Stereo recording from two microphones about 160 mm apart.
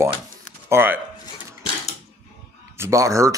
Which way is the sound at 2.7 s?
20° right (ahead or behind).